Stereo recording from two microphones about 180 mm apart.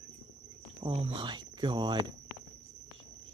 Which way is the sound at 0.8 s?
30° right (ahead or behind).